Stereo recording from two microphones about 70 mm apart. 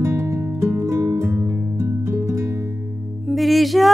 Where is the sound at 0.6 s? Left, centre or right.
Right.